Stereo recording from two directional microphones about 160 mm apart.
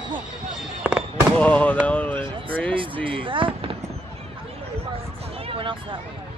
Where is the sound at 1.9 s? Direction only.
10° left (ahead or behind).